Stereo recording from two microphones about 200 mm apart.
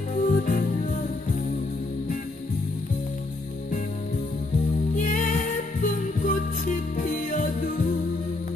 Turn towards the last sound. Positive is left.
turn(degrees=40)  # may be behind; listen again after turning